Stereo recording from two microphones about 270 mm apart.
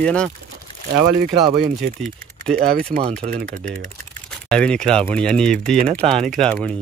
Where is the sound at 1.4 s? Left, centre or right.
Centre.